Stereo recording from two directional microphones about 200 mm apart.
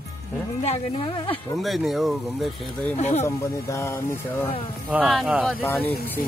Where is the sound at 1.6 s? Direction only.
Centre (ahead or behind).